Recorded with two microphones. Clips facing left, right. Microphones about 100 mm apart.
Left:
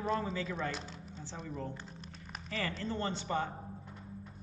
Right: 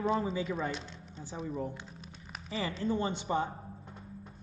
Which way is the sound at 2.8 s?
15° right (ahead or behind).